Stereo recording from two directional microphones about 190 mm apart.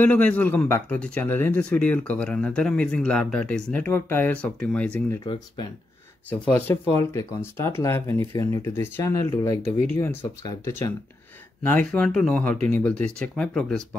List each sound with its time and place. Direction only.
0.0 s a man's voice: 5° left (ahead or behind)
5.2 s speech: 25° left (ahead or behind)
6.5 s a man's voice: 10° left (ahead or behind)